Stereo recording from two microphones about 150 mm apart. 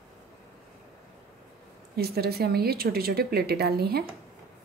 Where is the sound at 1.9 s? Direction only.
90° right.